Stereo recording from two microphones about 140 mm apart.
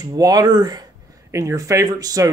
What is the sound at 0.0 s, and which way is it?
Speech, 25° right (ahead or behind).